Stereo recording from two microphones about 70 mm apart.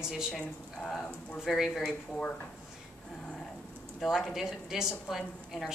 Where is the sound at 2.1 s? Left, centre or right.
Centre.